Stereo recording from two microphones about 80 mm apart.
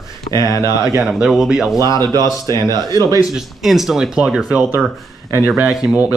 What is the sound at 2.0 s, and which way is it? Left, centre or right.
Speech, right.